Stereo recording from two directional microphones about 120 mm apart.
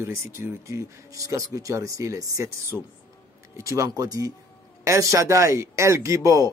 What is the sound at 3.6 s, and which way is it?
A man's voice, 25° right (ahead or behind).